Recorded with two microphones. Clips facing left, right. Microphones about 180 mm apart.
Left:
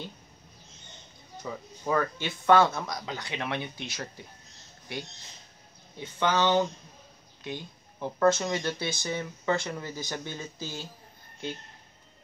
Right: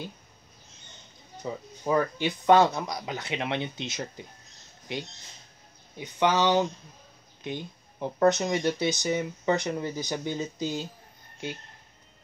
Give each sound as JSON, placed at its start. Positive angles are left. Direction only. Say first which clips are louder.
{"t": 1.4, "sound": "speech", "louder": "right 3 dB", "side_deg": -20}
{"t": 5.9, "sound": "speech", "louder": "right 2 dB", "side_deg": -15}